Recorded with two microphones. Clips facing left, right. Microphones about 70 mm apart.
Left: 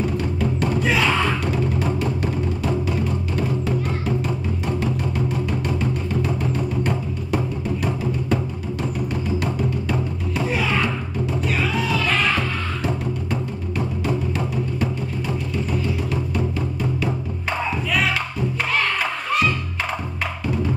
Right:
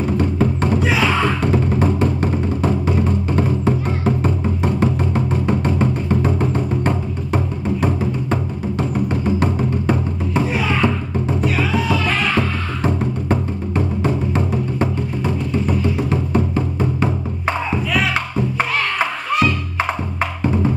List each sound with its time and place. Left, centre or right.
0.2 s music: right
0.8 s a sound: centre
1.4 s music: right
10.5 s music: centre
12.8 s music: right